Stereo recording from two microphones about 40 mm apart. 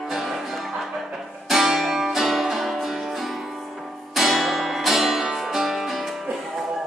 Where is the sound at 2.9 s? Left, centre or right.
Centre.